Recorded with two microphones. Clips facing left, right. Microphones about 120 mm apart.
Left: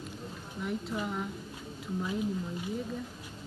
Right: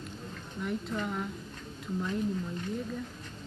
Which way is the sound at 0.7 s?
5° left (ahead or behind).